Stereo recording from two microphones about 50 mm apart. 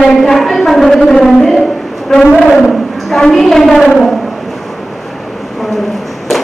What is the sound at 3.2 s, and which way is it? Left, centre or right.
Speech, centre.